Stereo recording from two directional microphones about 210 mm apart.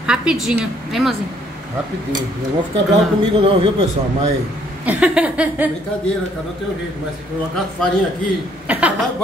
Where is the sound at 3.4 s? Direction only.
25° right (ahead or behind).